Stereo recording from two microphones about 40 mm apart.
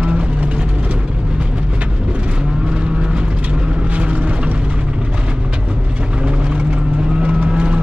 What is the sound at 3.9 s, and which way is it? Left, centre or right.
Vehicle, right.